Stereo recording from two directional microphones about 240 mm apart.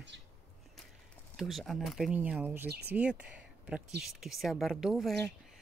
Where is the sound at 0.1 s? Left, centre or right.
Right.